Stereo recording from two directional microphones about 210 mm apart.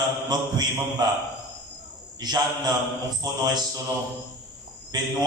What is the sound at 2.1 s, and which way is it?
Speech, 20° right (ahead or behind).